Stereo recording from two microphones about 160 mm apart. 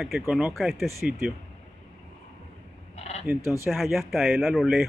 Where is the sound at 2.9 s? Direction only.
40° left (ahead or behind).